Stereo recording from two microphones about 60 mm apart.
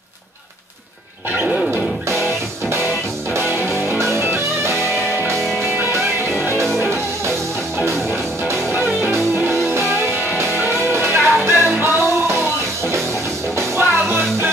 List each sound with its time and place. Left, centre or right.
1.4 s music: centre
4.0 s music: right
10.6 s music: right
13.7 s music: right